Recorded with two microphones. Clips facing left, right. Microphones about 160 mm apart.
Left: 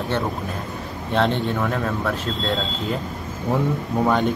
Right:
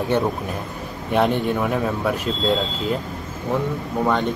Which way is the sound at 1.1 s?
10° right (ahead or behind).